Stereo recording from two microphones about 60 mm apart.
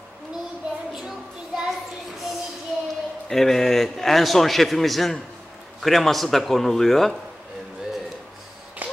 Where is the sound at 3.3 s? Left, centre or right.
Centre.